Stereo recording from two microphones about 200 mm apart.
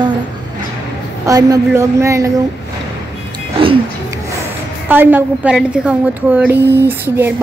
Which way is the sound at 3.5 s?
25° right (ahead or behind).